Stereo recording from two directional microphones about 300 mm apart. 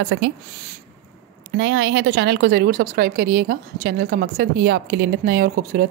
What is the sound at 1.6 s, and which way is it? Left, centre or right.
A woman's voice, right.